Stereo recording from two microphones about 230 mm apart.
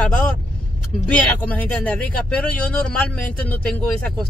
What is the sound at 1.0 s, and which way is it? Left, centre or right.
Speech, centre.